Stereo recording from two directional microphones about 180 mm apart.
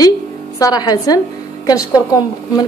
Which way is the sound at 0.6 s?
20° left (ahead or behind).